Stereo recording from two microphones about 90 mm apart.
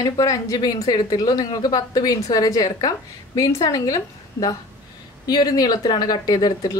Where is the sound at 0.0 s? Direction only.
40° left (ahead or behind).